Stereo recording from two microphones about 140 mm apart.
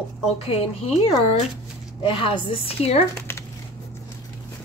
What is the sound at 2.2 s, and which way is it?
Speech, 40° left (ahead or behind).